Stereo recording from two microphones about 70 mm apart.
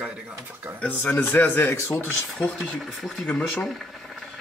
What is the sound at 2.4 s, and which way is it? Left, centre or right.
Speech, centre.